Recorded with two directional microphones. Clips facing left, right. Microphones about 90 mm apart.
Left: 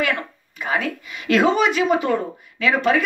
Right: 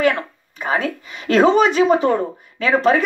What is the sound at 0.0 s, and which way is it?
A woman's voice, 40° right (ahead or behind).